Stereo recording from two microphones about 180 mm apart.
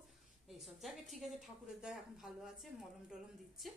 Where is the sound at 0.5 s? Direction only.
Centre (ahead or behind).